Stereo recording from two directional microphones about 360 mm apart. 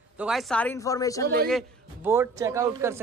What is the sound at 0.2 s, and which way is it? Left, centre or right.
Speech, centre.